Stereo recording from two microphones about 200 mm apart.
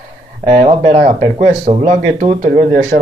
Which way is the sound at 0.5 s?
35° right (ahead or behind).